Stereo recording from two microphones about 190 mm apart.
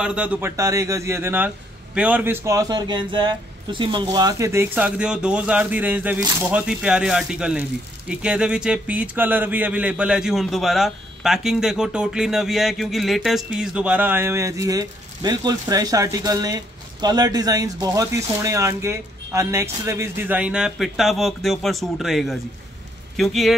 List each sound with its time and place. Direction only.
0.0 s speech: 5° right (ahead or behind)